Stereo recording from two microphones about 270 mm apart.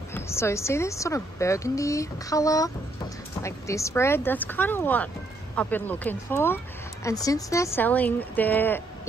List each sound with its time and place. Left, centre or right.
0.1 s a woman's voice: centre